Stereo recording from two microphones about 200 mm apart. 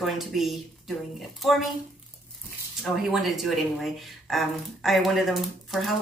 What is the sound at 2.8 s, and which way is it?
Speech, centre (ahead or behind).